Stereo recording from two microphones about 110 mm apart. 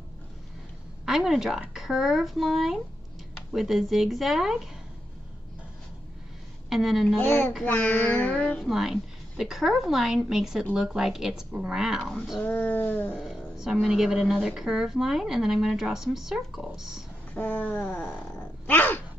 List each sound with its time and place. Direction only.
1.0 s a woman's voice: 5° right (ahead or behind)
6.7 s a woman's voice: 5° right (ahead or behind)
7.2 s child singing: 15° left (ahead or behind)
8.5 s a woman's voice: centre (ahead or behind)
12.4 s child singing: 15° left (ahead or behind)
13.2 s a sound: 5° right (ahead or behind)
13.7 s a woman's voice: centre (ahead or behind)
17.3 s a sound: 15° left (ahead or behind)